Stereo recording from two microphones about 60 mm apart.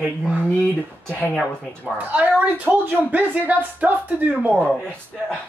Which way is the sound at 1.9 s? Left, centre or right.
Right.